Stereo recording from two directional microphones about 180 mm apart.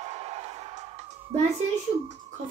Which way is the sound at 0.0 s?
35° right (ahead or behind).